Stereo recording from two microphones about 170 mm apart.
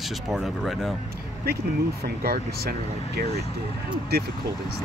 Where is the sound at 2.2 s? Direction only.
65° right (ahead or behind).